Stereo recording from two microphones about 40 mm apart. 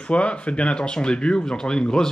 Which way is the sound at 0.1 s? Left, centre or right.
Left.